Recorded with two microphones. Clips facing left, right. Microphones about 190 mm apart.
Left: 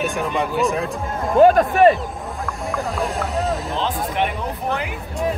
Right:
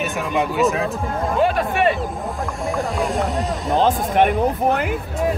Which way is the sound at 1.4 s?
45° left (ahead or behind).